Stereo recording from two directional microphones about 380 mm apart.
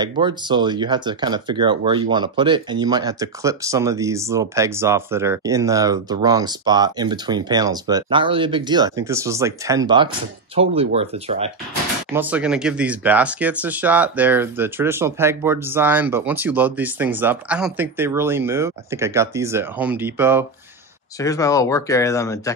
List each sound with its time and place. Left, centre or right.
0.2 s speech: centre
12.1 s speech: centre
21.2 s speech: centre